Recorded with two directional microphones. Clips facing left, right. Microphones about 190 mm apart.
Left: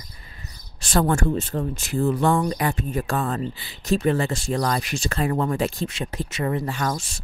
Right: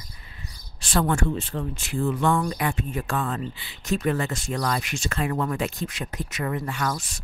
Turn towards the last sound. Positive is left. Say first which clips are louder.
# left 2 dB
turn(degrees=30)  # may be behind; listen again after turning